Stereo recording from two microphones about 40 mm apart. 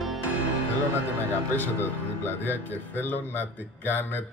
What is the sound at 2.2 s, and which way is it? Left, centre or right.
Speech, left.